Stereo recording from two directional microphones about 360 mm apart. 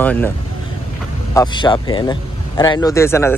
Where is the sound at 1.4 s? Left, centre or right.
Centre.